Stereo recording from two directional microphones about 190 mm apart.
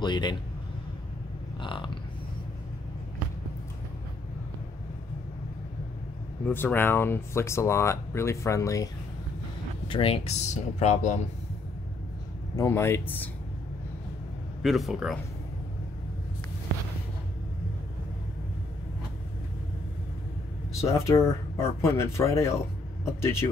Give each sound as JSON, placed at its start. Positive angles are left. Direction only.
{"t": 0.0, "sound": "a man's voice", "side_deg": 25}
{"t": 1.6, "sound": "speech", "side_deg": 25}
{"t": 6.4, "sound": "speech", "side_deg": 10}
{"t": 9.8, "sound": "speech", "side_deg": 30}
{"t": 12.5, "sound": "speech", "side_deg": 15}
{"t": 14.6, "sound": "speech", "side_deg": 0}
{"t": 20.8, "sound": "speech", "side_deg": 15}